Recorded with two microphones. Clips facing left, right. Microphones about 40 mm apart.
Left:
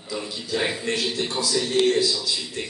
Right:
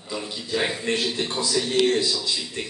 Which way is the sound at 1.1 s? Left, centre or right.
Centre.